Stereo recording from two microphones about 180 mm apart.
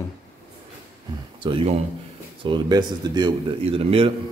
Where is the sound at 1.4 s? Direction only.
30° right (ahead or behind).